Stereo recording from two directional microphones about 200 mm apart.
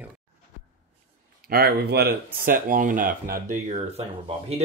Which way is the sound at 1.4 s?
50° right (ahead or behind).